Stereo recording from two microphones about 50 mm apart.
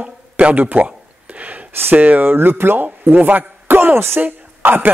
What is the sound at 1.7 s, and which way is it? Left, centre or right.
Speech, right.